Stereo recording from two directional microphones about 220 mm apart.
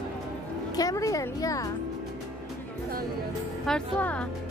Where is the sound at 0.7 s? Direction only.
15° left (ahead or behind).